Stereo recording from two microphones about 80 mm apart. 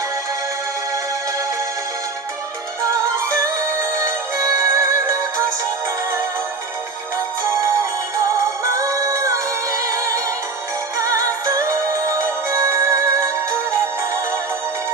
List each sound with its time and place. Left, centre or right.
4.0 s music: right
8.2 s music: right